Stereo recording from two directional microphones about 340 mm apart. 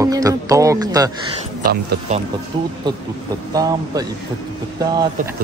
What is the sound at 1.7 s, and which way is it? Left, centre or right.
Speech, right.